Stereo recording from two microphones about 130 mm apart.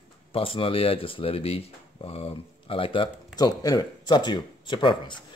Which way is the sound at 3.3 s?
30° left (ahead or behind).